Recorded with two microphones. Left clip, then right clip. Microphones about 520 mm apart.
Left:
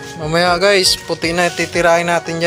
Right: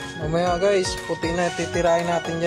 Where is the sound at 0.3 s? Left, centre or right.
Right.